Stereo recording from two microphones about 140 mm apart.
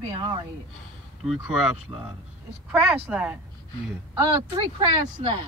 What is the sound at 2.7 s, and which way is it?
Speech, 10° right (ahead or behind).